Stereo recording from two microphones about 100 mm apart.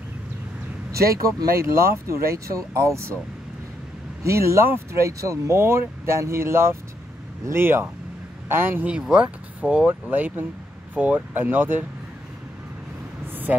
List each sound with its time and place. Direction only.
1.1 s speech: 30° right (ahead or behind)
4.2 s speech: 30° right (ahead or behind)
13.5 s speech: 15° right (ahead or behind)